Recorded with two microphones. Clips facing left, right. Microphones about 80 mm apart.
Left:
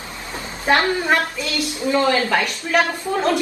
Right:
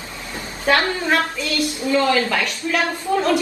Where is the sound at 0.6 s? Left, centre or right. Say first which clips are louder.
Left 1 dB; left.